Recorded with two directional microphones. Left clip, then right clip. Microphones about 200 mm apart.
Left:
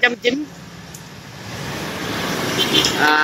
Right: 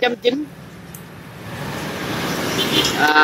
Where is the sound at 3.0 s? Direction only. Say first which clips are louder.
Right 3 dB; centre (ahead or behind).